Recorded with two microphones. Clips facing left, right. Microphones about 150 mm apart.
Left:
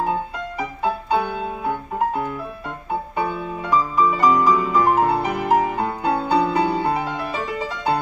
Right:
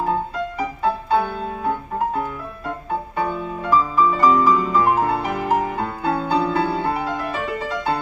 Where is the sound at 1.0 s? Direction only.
15° left (ahead or behind).